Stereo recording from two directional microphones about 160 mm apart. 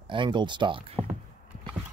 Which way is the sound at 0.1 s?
30° right (ahead or behind).